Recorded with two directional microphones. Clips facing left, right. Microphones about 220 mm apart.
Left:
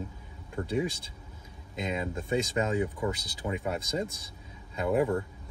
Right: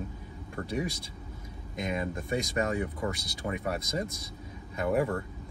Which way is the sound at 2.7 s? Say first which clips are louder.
Left 2 dB; 20° left (ahead or behind).